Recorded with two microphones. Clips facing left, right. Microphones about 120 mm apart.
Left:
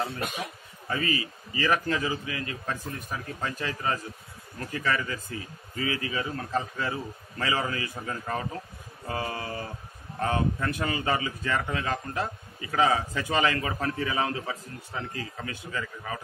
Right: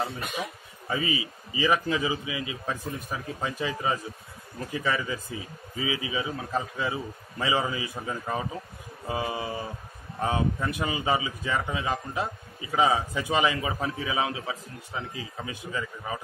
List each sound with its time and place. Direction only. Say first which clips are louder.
0.8 s a man's voice: even; 15° right (ahead or behind)